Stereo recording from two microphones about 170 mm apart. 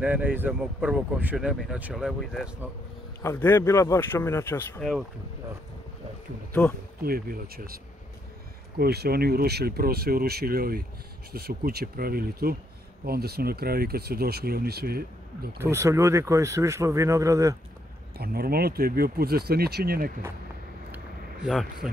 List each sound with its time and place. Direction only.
0.0 s speech: 10° right (ahead or behind)
3.2 s speech: 15° left (ahead or behind)
7.0 s speech: 60° right (ahead or behind)
15.6 s speech: 15° right (ahead or behind)
18.1 s speech: 65° right (ahead or behind)